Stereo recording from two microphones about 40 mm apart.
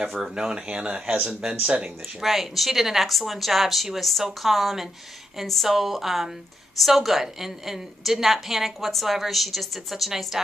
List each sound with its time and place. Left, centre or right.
0.0 s speech: centre
2.2 s a woman's voice: centre